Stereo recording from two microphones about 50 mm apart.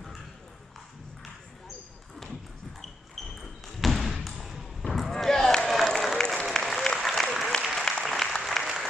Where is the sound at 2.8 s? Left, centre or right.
Centre.